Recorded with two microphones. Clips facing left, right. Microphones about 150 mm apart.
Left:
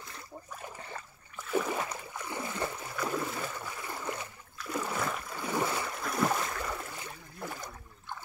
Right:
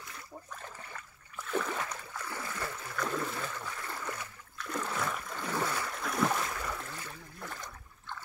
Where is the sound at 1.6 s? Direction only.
15° left (ahead or behind).